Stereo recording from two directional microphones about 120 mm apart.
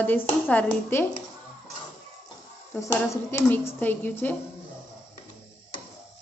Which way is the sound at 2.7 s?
20° left (ahead or behind).